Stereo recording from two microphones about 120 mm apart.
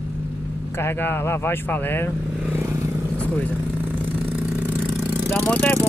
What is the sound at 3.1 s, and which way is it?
Vehicle, 10° left (ahead or behind).